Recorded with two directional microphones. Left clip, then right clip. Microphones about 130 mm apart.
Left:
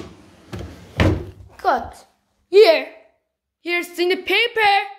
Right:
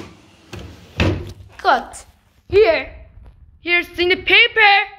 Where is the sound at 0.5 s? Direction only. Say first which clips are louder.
Left 1 dB; 70° left (ahead or behind).